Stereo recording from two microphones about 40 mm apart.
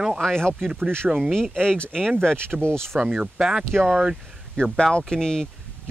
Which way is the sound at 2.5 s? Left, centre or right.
Centre.